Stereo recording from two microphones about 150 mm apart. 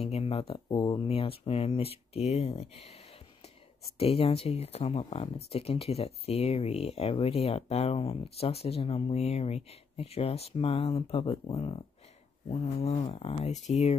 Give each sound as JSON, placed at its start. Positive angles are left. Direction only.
{"t": 0.0, "sound": "speech", "side_deg": 40}